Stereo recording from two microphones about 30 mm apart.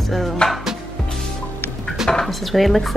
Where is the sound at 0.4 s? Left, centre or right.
Left.